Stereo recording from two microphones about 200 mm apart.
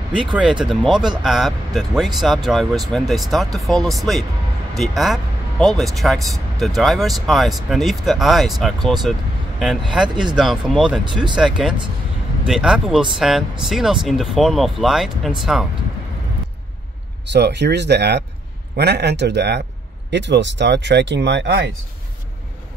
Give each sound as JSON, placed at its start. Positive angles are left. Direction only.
{"t": 0.1, "sound": "speech", "side_deg": -5}
{"t": 10.3, "sound": "speech", "side_deg": 0}
{"t": 17.3, "sound": "speech", "side_deg": -60}